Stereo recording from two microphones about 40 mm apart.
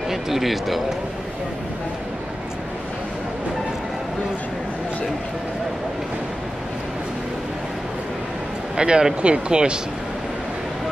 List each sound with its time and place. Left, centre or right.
0.1 s speech: centre
8.7 s speech: right